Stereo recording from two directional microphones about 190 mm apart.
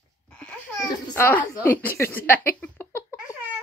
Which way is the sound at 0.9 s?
20° left (ahead or behind).